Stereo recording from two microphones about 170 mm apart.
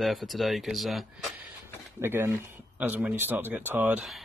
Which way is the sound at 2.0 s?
15° right (ahead or behind).